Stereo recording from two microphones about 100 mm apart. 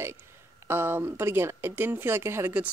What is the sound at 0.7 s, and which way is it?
Speech, 25° right (ahead or behind).